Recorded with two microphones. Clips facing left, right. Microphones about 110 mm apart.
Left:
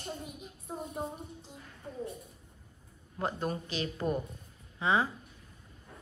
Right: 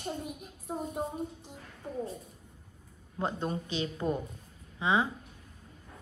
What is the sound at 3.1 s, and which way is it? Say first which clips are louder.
A woman's voice: right 1 dB; 20° right (ahead or behind).